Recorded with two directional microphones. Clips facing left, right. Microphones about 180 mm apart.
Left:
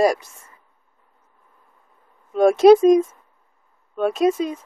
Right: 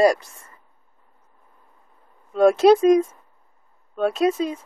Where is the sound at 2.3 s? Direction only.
Centre (ahead or behind).